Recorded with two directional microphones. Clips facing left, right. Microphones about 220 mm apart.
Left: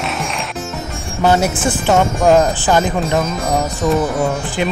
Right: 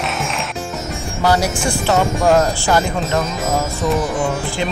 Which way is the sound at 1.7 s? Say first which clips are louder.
Left 1 dB; 15° left (ahead or behind).